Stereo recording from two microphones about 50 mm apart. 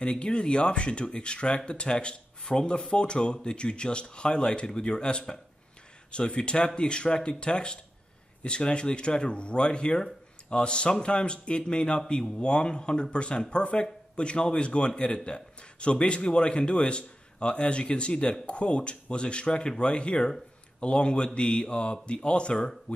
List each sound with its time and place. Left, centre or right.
0.0 s a man's voice: left